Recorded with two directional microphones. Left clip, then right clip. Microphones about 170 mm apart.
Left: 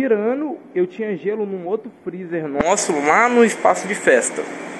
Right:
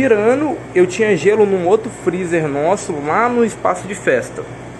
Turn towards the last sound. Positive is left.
turn(degrees=-15)  # may be behind; listen again after turning